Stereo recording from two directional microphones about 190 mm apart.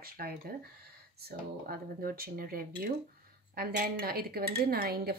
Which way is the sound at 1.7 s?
50° right (ahead or behind).